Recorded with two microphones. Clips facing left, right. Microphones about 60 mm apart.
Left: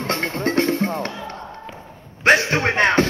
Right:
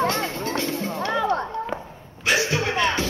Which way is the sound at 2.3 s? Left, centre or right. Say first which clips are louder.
Left 6 dB; left.